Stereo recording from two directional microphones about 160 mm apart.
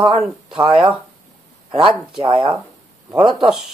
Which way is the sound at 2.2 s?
30° right (ahead or behind).